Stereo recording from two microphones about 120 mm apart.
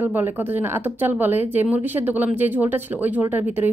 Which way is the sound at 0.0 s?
15° right (ahead or behind).